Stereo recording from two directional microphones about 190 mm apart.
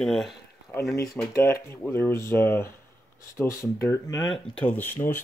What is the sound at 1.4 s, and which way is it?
Speech, 15° left (ahead or behind).